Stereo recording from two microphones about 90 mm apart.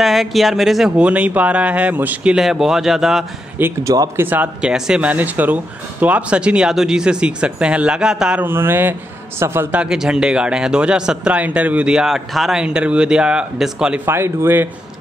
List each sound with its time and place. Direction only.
0.0 s a man's voice: centre (ahead or behind); by 2.3 s 20° right (ahead or behind)
2.3 s speech: 5° right (ahead or behind)
3.8 s speech: 45° right (ahead or behind)
4.2 s speech: 20° right (ahead or behind)
4.6 s a man's voice: 10° right (ahead or behind)
8.4 s speech: 25° right (ahead or behind)
9.7 s a man's voice: 10° right (ahead or behind)
14.0 s speech: 25° right (ahead or behind)